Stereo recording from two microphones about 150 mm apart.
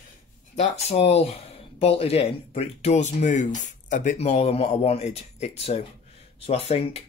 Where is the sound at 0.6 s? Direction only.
45° left (ahead or behind).